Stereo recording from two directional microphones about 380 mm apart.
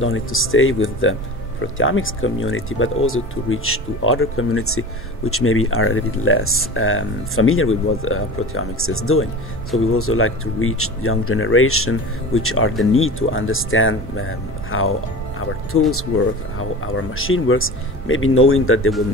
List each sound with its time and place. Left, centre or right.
0.0 s speech: left
16.1 s speech: left